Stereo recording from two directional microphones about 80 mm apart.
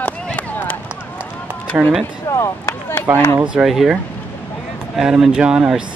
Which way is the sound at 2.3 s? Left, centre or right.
Left.